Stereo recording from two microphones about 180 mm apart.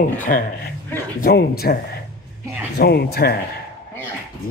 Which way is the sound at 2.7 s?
65° left (ahead or behind).